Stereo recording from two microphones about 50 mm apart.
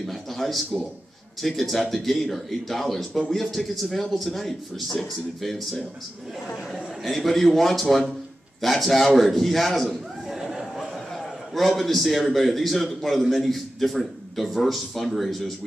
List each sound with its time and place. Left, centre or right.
0.0 s a man's voice: centre
10.2 s a sound: centre
11.1 s a man's voice: centre